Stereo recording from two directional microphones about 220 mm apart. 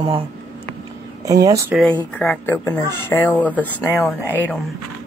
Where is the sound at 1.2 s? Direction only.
15° right (ahead or behind).